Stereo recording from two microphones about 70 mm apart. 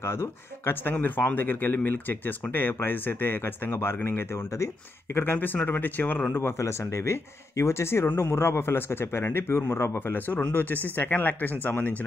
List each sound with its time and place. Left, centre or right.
0.0 s speech: left
6.6 s speech: left